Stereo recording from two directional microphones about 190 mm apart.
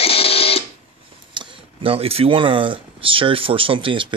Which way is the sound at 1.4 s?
25° right (ahead or behind).